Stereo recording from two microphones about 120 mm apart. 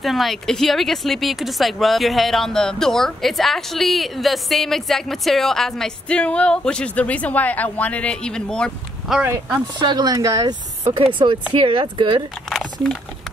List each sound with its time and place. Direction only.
0.0 s speech: centre (ahead or behind)
9.8 s speech: 35° right (ahead or behind)
11.1 s speech: 45° right (ahead or behind)